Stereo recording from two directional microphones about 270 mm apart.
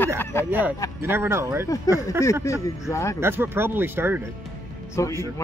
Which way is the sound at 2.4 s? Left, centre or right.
Centre.